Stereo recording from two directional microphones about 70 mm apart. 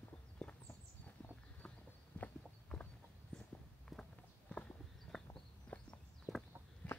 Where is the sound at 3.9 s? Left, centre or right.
Centre.